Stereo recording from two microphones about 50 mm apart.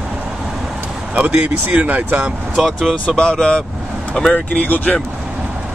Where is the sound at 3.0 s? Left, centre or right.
Centre.